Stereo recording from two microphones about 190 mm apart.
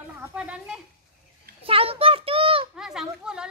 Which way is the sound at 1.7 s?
30° right (ahead or behind).